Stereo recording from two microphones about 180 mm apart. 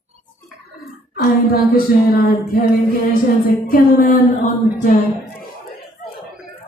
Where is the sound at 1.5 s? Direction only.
55° left (ahead or behind).